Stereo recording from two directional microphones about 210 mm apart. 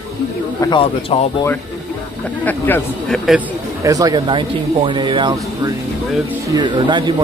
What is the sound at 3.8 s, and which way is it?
Speech, 15° right (ahead or behind).